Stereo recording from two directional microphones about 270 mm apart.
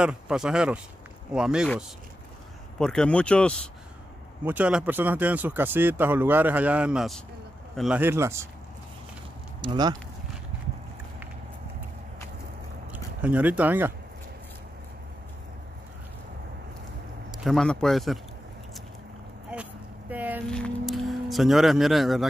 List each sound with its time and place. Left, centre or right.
0.0 s a man's voice: centre
9.6 s speech: centre
12.9 s speech: centre
17.4 s a man's voice: centre
19.5 s vehicle: centre